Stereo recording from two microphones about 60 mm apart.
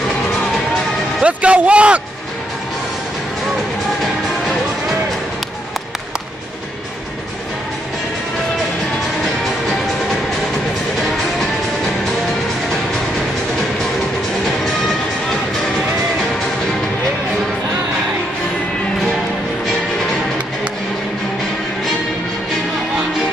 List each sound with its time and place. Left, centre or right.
1.2 s a man's voice: right